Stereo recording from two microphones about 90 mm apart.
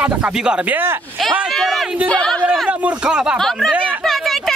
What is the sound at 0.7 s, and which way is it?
Speech, 25° right (ahead or behind).